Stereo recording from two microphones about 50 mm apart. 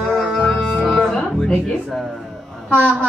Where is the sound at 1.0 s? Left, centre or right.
Centre.